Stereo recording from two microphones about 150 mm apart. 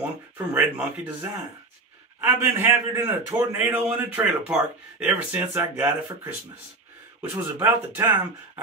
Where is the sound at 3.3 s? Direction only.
25° right (ahead or behind).